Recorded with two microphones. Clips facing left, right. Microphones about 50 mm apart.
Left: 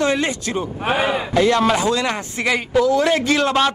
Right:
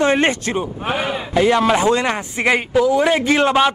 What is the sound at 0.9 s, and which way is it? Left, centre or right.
Speech, left.